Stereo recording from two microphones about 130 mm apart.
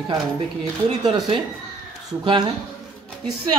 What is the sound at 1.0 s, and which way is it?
Speech, 35° right (ahead or behind).